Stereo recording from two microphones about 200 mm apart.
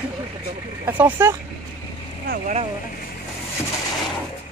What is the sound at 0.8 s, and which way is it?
Speech, 10° right (ahead or behind).